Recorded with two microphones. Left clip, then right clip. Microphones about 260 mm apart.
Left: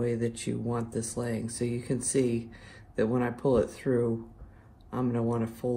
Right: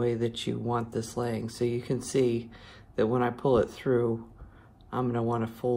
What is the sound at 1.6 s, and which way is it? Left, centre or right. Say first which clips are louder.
Speech: right 5 dB; right.